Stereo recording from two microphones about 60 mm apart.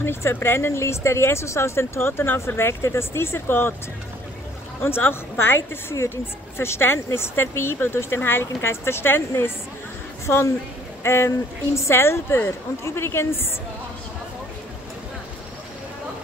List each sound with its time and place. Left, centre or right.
0.0 s speech: left
4.8 s speech: left
10.2 s speech: left